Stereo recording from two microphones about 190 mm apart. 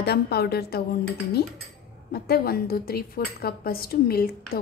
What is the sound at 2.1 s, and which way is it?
Speech, 55° left (ahead or behind).